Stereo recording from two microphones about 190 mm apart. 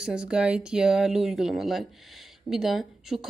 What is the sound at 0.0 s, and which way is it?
Speech, 5° right (ahead or behind).